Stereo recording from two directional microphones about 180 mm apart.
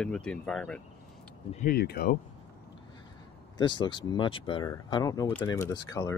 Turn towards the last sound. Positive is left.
turn(degrees=15)  # may be behind; listen again after turning